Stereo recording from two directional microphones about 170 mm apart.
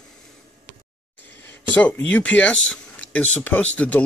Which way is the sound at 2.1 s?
10° left (ahead or behind).